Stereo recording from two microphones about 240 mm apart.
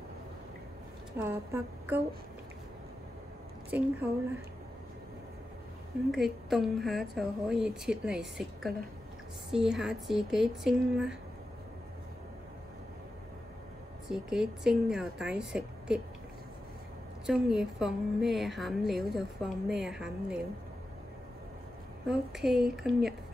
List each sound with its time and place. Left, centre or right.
1.1 s a woman's voice: centre
3.7 s a woman's voice: centre
6.1 s a woman's voice: centre
14.0 s a woman's voice: centre
17.3 s a woman's voice: centre
22.1 s a woman's voice: centre